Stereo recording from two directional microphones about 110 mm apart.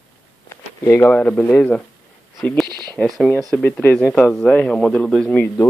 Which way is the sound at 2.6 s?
40° right (ahead or behind).